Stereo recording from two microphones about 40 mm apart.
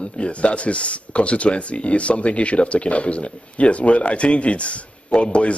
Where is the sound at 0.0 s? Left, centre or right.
Left.